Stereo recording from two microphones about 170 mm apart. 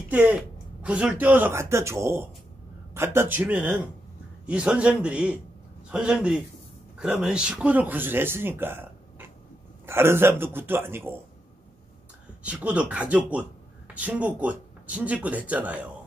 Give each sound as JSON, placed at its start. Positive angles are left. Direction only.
{"t": 0.1, "sound": "a man's voice", "side_deg": -10}
{"t": 12.4, "sound": "speech", "side_deg": -5}